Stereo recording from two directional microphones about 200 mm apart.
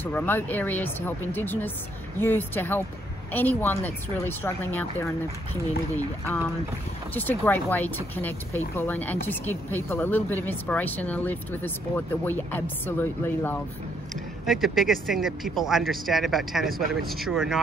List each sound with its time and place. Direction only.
0.0 s speech: 10° left (ahead or behind)
6.2 s speech: 10° left (ahead or behind)
14.4 s speech: centre (ahead or behind)
16.6 s speech: 45° right (ahead or behind)
17.1 s speech: centre (ahead or behind)